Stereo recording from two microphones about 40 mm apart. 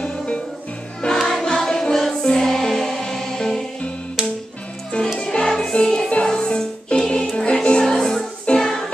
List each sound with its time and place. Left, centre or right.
1.1 s music: centre
1.4 s music: centre
4.9 s music: centre